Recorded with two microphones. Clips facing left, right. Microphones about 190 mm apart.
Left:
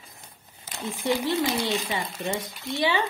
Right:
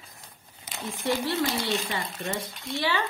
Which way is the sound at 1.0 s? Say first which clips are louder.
Left 2 dB; 15° left (ahead or behind).